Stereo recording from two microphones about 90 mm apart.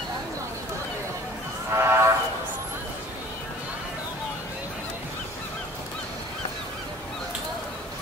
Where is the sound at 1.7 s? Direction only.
25° right (ahead or behind).